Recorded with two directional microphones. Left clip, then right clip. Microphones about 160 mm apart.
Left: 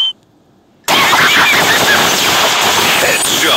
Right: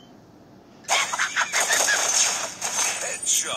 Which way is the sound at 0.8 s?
90° left.